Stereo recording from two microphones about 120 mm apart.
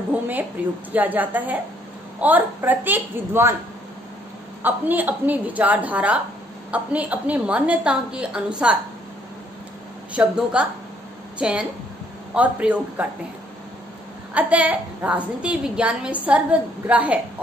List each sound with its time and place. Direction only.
0.1 s a woman's voice: 15° right (ahead or behind)
4.6 s a woman's voice: 15° right (ahead or behind)
10.1 s a woman's voice: 10° right (ahead or behind)
14.3 s a woman's voice: 10° right (ahead or behind)